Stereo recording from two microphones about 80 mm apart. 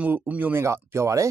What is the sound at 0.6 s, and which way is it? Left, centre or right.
Speech, right.